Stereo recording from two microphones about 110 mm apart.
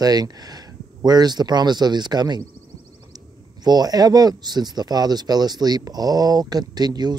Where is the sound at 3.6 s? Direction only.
40° right (ahead or behind).